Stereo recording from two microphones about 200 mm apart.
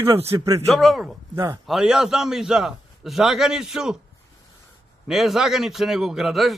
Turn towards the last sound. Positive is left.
turn(degrees=0)  # may be behind; listen again after turning